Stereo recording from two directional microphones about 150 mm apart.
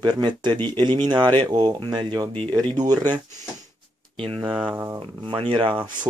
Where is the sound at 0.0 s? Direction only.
30° right (ahead or behind).